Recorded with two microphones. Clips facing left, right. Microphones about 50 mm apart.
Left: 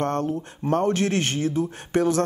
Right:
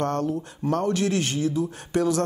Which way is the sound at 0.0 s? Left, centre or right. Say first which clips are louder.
Left 1 dB; left.